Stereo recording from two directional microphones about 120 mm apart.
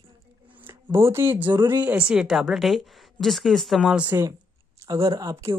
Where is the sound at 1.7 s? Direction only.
15° right (ahead or behind).